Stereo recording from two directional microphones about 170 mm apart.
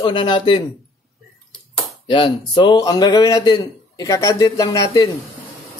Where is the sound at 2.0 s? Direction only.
30° left (ahead or behind).